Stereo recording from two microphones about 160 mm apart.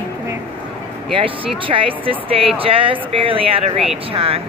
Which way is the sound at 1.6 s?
35° right (ahead or behind).